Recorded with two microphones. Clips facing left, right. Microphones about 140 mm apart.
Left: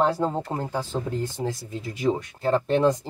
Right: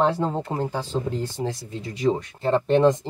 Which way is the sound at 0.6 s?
20° right (ahead or behind).